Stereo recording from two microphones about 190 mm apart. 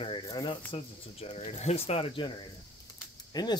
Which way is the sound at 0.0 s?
25° left (ahead or behind).